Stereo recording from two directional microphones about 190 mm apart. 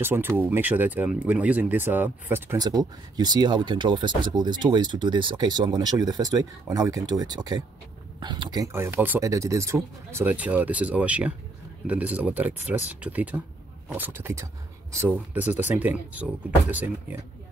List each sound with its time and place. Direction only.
0.0 s speech: 10° right (ahead or behind)